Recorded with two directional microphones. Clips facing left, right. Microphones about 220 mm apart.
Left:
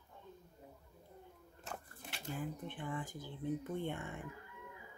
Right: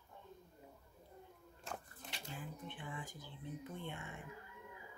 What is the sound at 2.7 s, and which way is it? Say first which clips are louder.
Speech: left 8 dB; 50° left (ahead or behind).